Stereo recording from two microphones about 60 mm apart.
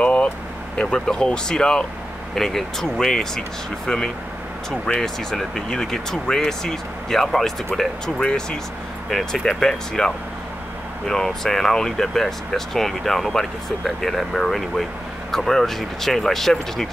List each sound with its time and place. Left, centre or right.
0.0 s vehicle: left
0.7 s speech: centre